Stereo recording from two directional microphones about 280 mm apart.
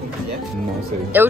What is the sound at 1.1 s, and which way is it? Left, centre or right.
Speech, centre.